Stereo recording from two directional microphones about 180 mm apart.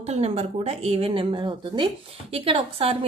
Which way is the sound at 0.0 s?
35° right (ahead or behind).